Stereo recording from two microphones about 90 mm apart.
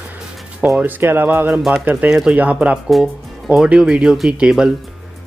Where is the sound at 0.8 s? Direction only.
20° right (ahead or behind).